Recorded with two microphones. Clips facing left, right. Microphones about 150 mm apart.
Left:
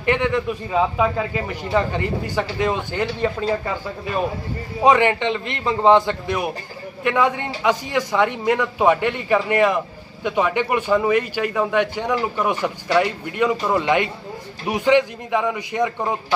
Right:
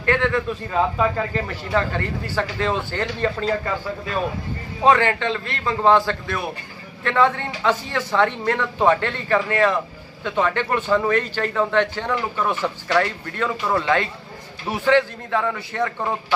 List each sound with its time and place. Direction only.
0.0 s a man's voice: 15° left (ahead or behind)
4.8 s a man's voice: 15° left (ahead or behind)